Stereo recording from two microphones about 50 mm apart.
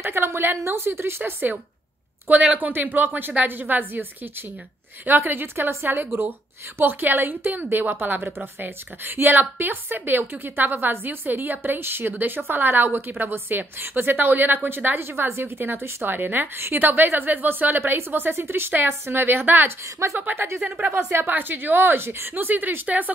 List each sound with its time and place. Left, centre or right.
0.0 s a sound: right
0.7 s speech: right
2.5 s a woman's voice: right
15.0 s a woman's voice: right
15.6 s a woman's voice: right
19.8 s a woman's voice: right
20.2 s a woman's voice: right
20.5 s speech: centre
21.3 s a woman's voice: right
22.3 s a woman's voice: right